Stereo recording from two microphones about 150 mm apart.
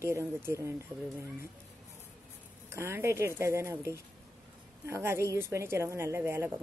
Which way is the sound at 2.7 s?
15° right (ahead or behind).